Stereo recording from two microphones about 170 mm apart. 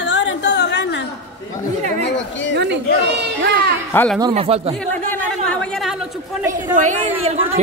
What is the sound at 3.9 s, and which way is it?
Speech, 10° left (ahead or behind).